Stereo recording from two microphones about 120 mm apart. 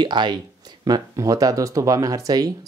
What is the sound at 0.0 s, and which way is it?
Speech, 40° right (ahead or behind).